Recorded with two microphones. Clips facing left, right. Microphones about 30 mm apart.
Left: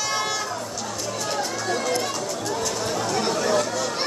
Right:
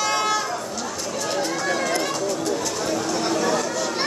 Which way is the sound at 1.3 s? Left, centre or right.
Centre.